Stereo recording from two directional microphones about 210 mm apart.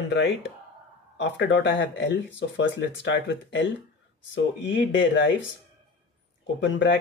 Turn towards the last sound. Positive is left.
turn(degrees=60)  # may be behind; listen again after turning